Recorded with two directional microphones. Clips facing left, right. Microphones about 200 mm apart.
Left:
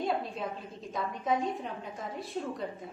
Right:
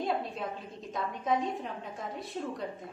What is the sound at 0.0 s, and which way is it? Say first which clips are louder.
A woman's voice: even; centre (ahead or behind).